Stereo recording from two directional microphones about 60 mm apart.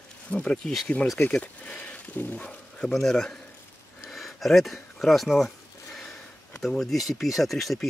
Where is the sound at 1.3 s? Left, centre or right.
Left.